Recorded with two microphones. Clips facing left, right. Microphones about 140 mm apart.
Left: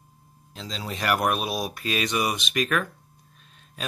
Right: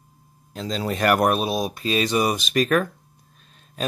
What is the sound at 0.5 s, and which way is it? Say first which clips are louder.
Speech: right 8 dB; 50° right (ahead or behind).